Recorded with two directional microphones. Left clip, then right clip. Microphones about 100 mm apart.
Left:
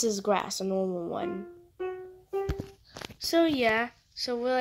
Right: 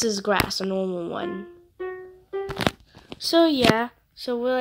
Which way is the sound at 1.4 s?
25° left (ahead or behind).